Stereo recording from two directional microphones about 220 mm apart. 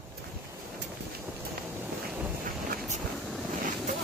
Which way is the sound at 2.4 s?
40° right (ahead or behind).